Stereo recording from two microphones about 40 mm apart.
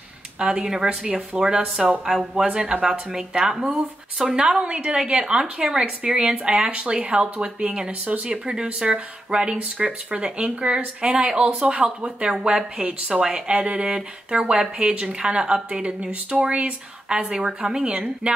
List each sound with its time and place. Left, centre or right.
0.4 s speech: centre
17.2 s speech: centre